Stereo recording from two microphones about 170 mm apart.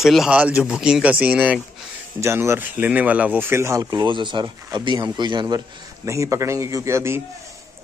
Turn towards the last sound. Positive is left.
turn(degrees=-15)  # may be behind; listen again after turning